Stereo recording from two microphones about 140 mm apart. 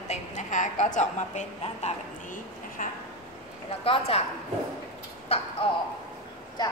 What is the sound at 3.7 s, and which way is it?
Speech, 45° left (ahead or behind).